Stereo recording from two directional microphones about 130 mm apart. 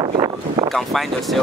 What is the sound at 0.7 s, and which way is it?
Speech, centre (ahead or behind).